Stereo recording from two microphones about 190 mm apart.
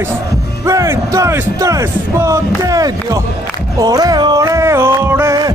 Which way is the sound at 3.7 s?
20° right (ahead or behind).